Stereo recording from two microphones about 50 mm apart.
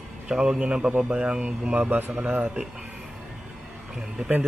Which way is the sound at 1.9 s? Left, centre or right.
Right.